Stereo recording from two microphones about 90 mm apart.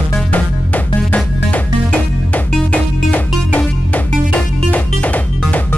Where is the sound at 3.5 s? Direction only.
20° left (ahead or behind).